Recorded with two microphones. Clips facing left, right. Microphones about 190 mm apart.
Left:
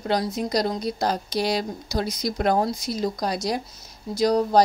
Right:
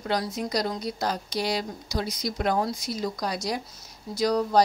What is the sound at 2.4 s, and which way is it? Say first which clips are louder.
Speech: left 4 dB; 40° left (ahead or behind).